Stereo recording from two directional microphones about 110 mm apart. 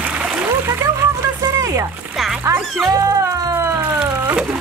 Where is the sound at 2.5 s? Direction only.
30° right (ahead or behind).